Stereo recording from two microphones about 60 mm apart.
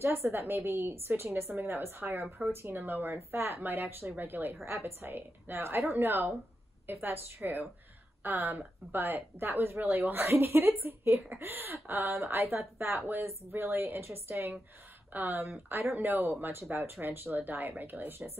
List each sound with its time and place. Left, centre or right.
0.0 s a woman's voice: right